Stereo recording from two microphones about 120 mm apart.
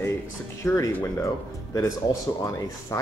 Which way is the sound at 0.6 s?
25° left (ahead or behind).